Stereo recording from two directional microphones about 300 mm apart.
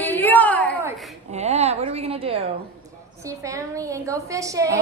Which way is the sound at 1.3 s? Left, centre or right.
Right.